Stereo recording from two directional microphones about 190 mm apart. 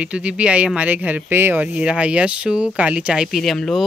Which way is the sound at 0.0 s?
5° right (ahead or behind).